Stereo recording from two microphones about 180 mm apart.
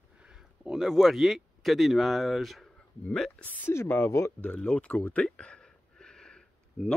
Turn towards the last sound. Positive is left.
turn(degrees=5)  # may be behind; listen again after turning